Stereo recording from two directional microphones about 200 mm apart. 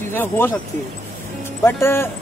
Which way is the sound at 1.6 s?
10° left (ahead or behind).